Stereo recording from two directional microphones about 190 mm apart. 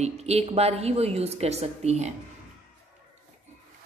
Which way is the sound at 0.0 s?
35° right (ahead or behind).